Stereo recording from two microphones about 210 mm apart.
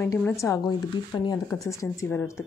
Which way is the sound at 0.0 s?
10° left (ahead or behind).